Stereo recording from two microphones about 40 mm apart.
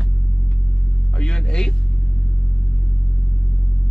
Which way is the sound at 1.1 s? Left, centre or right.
Left.